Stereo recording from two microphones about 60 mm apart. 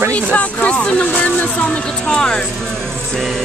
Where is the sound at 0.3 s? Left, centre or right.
Left.